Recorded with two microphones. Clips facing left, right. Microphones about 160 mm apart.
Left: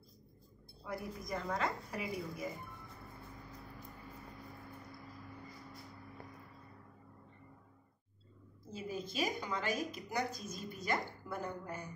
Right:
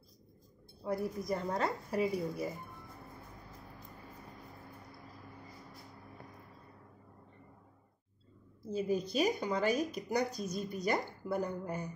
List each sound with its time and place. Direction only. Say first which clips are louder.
0.8 s speech: right 8 dB; 35° right (ahead or behind)
8.7 s speech: right 7 dB; 40° right (ahead or behind)